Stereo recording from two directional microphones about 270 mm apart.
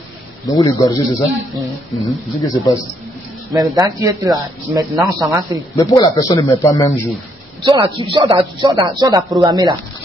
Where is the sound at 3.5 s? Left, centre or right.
Centre.